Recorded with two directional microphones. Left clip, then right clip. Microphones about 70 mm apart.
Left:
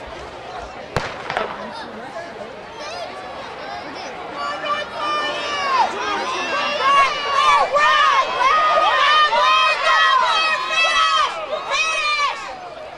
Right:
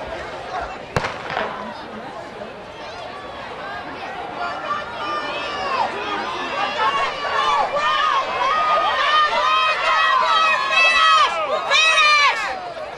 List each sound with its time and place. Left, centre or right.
5.1 s crowd: left
9.4 s run: centre
11.7 s run: right